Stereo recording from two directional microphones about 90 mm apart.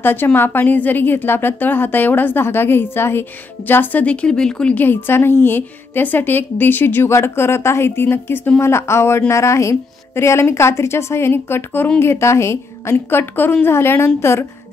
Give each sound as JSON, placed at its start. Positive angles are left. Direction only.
{"t": 0.0, "sound": "a woman's voice", "side_deg": 25}
{"t": 4.7, "sound": "a woman's voice", "side_deg": 25}